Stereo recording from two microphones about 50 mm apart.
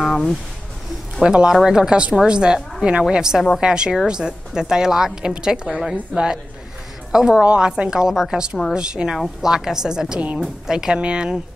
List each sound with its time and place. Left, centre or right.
0.0 s a sound: centre
1.2 s a woman's voice: centre
7.1 s a woman's voice: centre